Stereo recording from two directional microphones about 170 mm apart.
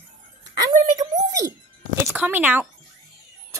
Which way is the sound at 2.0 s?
10° right (ahead or behind).